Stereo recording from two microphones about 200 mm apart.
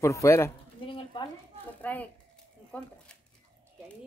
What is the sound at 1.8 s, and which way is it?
A woman's voice, 10° left (ahead or behind).